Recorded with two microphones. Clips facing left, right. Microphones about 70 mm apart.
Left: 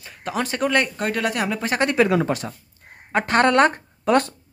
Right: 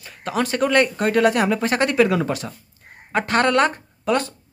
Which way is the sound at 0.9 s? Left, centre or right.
Centre.